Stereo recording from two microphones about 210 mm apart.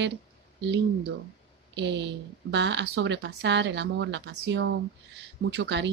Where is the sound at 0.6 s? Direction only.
55° right (ahead or behind).